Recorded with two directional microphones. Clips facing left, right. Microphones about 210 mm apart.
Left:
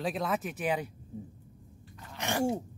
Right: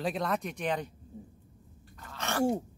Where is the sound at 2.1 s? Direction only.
15° left (ahead or behind).